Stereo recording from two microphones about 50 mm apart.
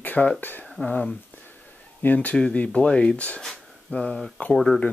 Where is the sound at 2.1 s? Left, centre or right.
Left.